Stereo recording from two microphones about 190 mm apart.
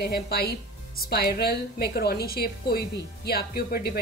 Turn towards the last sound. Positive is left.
turn(degrees=55)  # may be behind; listen again after turning